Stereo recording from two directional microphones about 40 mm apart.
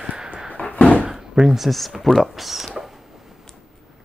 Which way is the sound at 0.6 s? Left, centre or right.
Left.